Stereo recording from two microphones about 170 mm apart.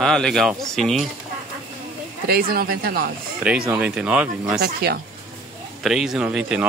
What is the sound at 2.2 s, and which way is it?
Speech, 65° right (ahead or behind).